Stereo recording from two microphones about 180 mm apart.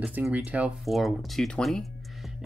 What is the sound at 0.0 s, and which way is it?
Speech, 5° right (ahead or behind).